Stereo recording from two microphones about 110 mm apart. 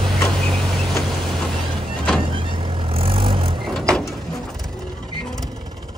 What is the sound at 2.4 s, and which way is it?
Vehicle, 55° right (ahead or behind).